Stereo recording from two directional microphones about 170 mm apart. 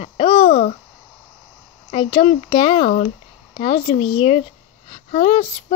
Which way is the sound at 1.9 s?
30° left (ahead or behind).